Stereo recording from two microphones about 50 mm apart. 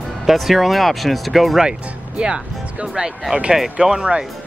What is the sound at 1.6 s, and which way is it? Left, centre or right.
Speech, centre.